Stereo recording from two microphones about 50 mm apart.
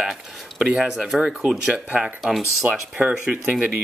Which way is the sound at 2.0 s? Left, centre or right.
Centre.